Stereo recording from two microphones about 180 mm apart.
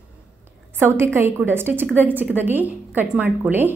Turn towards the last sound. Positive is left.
turn(degrees=-10)  # may be behind; listen again after turning